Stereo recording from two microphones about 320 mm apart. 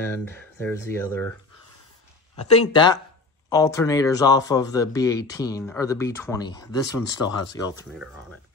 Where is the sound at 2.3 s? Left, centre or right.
Centre.